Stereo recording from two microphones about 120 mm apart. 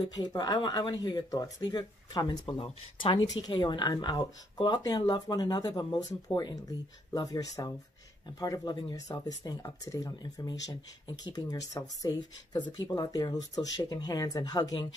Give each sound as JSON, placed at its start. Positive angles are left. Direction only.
{"t": 0.1, "sound": "speech", "side_deg": 35}